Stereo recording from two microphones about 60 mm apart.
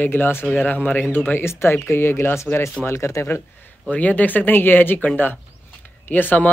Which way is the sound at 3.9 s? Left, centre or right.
Left.